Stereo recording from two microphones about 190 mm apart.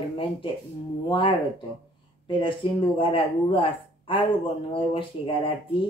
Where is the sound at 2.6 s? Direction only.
25° left (ahead or behind).